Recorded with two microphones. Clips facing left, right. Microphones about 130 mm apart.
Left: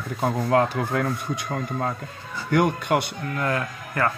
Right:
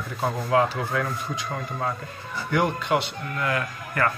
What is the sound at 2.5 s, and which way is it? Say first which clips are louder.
Speech: left 2 dB; 50° left (ahead or behind).